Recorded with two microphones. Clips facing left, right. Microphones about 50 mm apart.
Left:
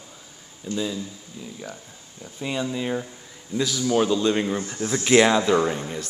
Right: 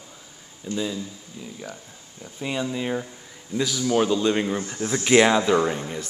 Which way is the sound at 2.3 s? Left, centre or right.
Centre.